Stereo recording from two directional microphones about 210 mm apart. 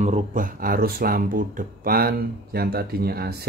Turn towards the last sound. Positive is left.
turn(degrees=-50)  # may be behind; listen again after turning